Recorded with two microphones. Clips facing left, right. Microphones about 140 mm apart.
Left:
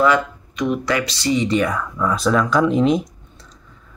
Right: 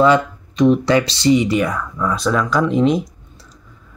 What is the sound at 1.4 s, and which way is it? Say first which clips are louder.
Speech: right 1 dB; 5° right (ahead or behind).